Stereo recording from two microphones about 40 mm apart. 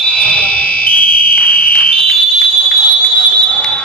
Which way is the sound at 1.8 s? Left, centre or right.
Centre.